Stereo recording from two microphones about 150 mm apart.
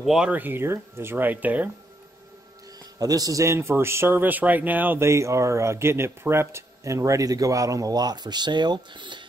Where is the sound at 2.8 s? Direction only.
25° right (ahead or behind).